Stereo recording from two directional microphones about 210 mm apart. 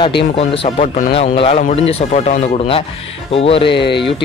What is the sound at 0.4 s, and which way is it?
Speech, 30° left (ahead or behind).